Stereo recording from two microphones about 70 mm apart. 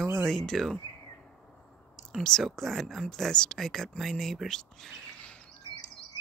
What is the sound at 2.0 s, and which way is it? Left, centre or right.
Speech, centre.